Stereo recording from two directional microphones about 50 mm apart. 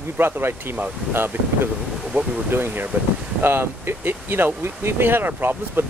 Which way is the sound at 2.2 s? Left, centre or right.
Right.